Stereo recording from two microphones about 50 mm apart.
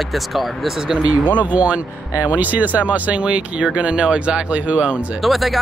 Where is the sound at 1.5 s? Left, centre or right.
Right.